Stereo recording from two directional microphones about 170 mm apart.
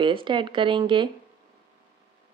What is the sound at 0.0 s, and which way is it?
Speech, 30° right (ahead or behind).